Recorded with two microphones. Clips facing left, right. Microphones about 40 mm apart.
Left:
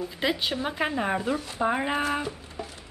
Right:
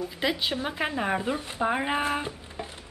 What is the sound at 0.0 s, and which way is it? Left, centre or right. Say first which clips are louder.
Speech: even; centre.